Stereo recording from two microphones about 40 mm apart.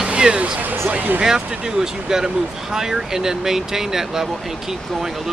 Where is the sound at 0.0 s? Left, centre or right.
Right.